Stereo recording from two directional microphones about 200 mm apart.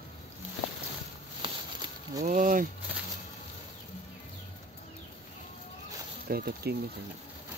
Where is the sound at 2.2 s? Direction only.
40° right (ahead or behind).